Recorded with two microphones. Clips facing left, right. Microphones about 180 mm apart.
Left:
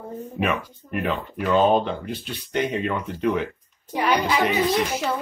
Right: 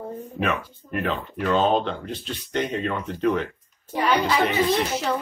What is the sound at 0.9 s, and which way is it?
Speech, centre (ahead or behind).